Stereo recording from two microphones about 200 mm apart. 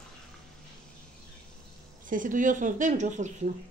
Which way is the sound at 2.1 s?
40° right (ahead or behind).